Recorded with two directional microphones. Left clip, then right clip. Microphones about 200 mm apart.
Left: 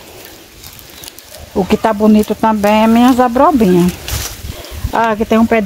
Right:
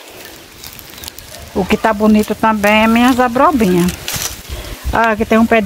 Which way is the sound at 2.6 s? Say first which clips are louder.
Left 1 dB; 5° right (ahead or behind).